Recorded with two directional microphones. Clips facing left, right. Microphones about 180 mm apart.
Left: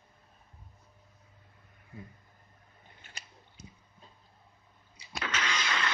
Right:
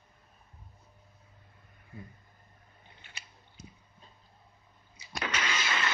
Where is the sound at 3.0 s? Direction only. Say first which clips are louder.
Left 1 dB; 45° left (ahead or behind).